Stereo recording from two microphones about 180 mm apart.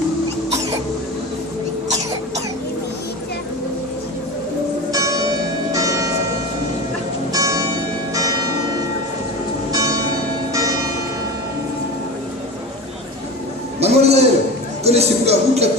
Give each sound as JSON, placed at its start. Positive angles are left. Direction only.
{"t": 4.9, "sound": "church bell", "side_deg": -20}
{"t": 7.3, "sound": "music", "side_deg": -20}
{"t": 9.7, "sound": "church bell", "side_deg": -20}
{"t": 13.7, "sound": "a sound", "side_deg": -35}